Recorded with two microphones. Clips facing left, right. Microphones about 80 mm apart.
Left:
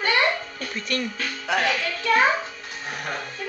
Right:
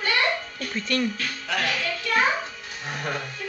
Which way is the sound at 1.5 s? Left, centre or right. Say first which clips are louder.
Left 4 dB; centre.